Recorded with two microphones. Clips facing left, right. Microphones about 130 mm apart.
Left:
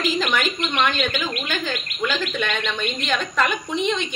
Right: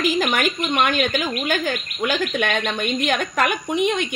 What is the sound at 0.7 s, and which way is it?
A woman's voice, 50° right (ahead or behind).